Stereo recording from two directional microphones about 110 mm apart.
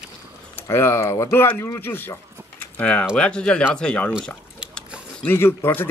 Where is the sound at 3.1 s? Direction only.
10° left (ahead or behind).